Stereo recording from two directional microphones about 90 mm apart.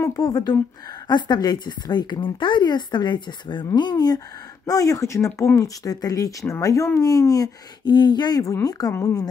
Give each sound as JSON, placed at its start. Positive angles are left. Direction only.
{"t": 0.0, "sound": "speech", "side_deg": 40}
{"t": 5.6, "sound": "speech", "side_deg": 45}
{"t": 7.8, "sound": "speech", "side_deg": 55}